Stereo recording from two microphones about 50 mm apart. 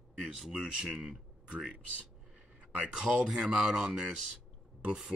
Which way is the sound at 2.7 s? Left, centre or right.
Right.